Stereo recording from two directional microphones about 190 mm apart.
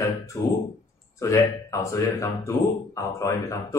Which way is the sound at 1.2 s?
15° left (ahead or behind).